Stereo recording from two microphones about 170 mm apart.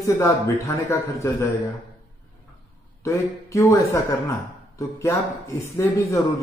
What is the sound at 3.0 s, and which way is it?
A man's voice, 20° left (ahead or behind).